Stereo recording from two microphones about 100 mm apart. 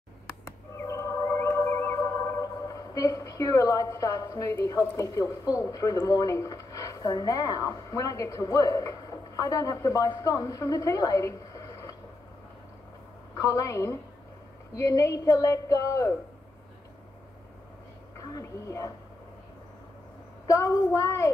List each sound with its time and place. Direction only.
0.7 s music: 30° left (ahead or behind)
2.4 s a woman's voice: 35° left (ahead or behind)
13.4 s a woman's voice: 30° left (ahead or behind)
18.1 s speech: 30° left (ahead or behind)
20.6 s a woman's voice: 30° left (ahead or behind)